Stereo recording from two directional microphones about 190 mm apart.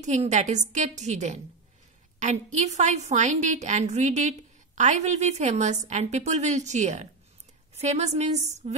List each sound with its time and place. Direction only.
0.0 s a woman's voice: 40° right (ahead or behind)